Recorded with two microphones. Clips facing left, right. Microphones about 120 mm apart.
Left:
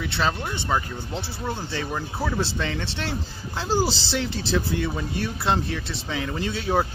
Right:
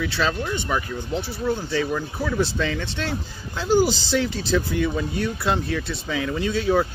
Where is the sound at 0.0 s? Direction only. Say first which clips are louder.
Right 2 dB; 20° left (ahead or behind).